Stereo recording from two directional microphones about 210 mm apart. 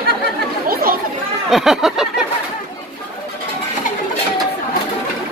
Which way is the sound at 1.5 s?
Centre (ahead or behind).